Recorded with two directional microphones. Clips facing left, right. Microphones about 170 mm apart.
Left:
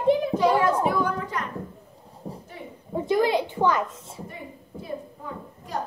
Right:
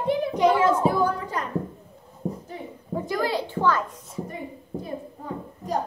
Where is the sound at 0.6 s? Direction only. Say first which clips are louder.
Right 2 dB; 30° right (ahead or behind).